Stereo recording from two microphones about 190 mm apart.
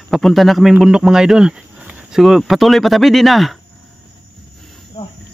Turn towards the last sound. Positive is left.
turn(degrees=35)  # may be behind; listen again after turning